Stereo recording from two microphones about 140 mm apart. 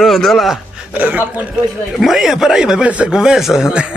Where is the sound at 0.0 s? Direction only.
Centre (ahead or behind).